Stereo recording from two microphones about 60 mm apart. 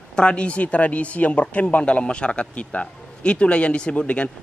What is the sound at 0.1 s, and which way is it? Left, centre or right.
Speech, centre.